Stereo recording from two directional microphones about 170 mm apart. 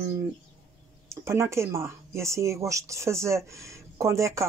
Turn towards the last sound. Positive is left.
turn(degrees=-15)  # may be behind; listen again after turning